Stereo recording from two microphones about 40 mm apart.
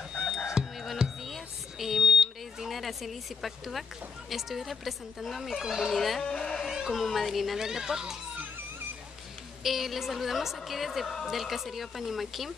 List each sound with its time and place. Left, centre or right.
0.2 s a sound: centre
4.3 s a woman's voice: centre
5.6 s speech: centre
6.2 s speech: centre
6.6 s speech: centre
9.6 s a woman's voice: centre